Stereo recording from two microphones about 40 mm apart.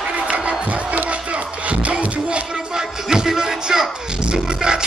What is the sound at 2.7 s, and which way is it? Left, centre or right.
Music, centre.